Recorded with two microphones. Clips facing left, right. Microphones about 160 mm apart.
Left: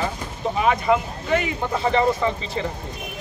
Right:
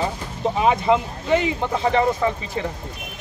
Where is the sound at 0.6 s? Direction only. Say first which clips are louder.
Right 1 dB; 25° right (ahead or behind).